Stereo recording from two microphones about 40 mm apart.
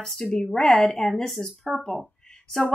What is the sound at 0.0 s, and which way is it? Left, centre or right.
Speech, centre.